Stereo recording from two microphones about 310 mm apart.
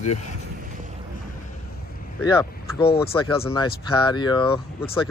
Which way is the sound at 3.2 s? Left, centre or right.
Centre.